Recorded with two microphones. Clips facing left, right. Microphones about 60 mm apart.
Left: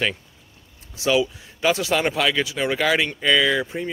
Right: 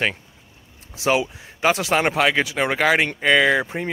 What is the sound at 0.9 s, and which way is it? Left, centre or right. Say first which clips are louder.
Speech: even; right.